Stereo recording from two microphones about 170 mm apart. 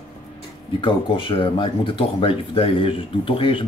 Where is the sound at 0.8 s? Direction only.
30° left (ahead or behind).